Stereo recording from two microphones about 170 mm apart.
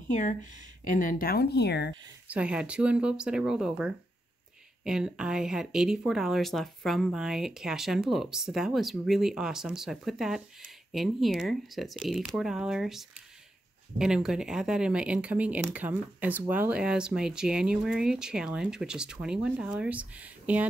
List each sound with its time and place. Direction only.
0.1 s speech: 45° left (ahead or behind); by 2.0 s 75° left (ahead or behind)
2.2 s speech: 5° right (ahead or behind)